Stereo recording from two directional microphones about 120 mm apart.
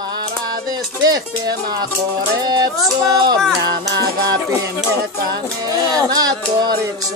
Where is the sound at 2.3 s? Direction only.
35° right (ahead or behind).